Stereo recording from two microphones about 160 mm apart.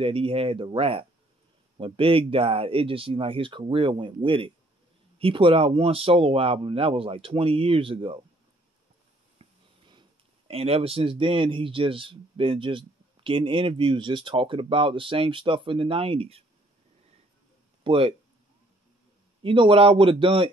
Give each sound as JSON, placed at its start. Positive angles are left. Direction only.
{"t": 0.0, "sound": "speech", "side_deg": -35}
{"t": 9.4, "sound": "a sound", "side_deg": -40}
{"t": 10.5, "sound": "speech", "side_deg": -40}
{"t": 17.8, "sound": "speech", "side_deg": -35}
{"t": 19.4, "sound": "speech", "side_deg": -30}